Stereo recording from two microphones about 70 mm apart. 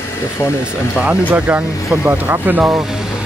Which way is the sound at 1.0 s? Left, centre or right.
Right.